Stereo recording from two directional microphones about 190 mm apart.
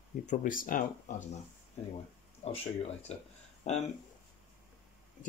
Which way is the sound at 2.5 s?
35° left (ahead or behind).